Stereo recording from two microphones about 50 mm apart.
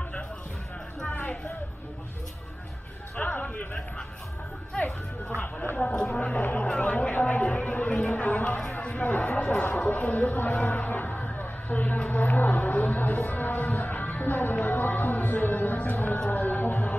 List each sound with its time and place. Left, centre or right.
1.0 s a sound: left
3.2 s speech: left
4.8 s speech: left
5.8 s speech: centre
6.8 s chatter: left
8.8 s a sound: left
9.4 s speech: left
11.3 s a sound: left
12.1 s speech: left